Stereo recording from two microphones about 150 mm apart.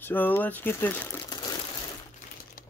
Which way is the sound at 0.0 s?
15° left (ahead or behind).